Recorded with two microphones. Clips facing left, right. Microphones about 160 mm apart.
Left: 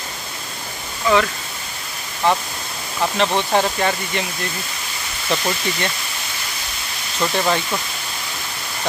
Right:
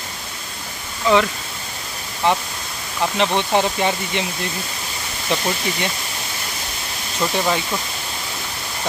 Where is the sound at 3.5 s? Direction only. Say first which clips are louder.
Even; 15° right (ahead or behind).